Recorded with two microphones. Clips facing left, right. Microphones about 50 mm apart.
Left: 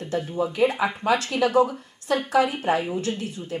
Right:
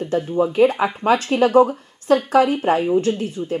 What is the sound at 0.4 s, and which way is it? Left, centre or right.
Speech, right.